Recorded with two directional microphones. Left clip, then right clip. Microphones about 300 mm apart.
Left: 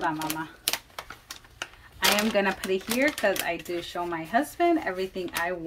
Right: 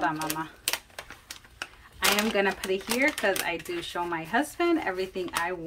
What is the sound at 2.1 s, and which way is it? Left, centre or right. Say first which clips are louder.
Speech: left 1 dB; centre.